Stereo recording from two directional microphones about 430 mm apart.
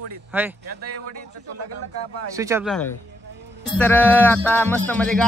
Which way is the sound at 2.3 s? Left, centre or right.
Centre.